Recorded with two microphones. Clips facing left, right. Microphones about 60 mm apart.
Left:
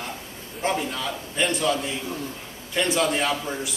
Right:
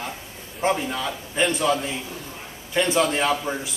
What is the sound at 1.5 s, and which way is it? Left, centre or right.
A man's voice, centre.